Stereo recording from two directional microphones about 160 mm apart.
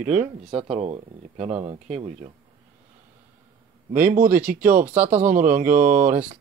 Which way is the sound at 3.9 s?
60° right (ahead or behind).